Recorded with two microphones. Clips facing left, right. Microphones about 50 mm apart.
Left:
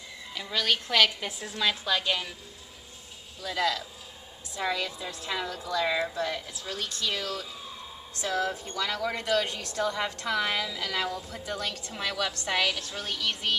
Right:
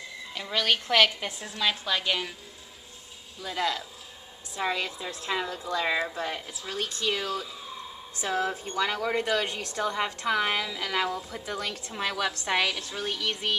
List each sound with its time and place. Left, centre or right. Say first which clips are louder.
0.5 s a woman's voice: right 2 dB; centre
1.2 s a woman's voice: even; centre
3.4 s a woman's voice: left 1 dB; right